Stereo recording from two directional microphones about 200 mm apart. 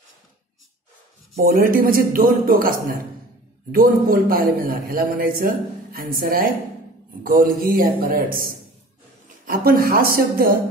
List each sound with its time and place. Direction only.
1.4 s a man's voice: 45° right (ahead or behind)